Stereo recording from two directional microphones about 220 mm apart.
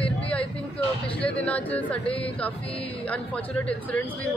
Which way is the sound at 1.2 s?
5° left (ahead or behind).